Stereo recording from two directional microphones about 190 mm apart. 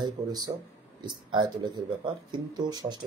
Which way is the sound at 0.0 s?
20° right (ahead or behind).